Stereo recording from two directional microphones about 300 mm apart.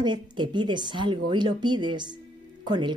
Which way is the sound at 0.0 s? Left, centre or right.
Centre.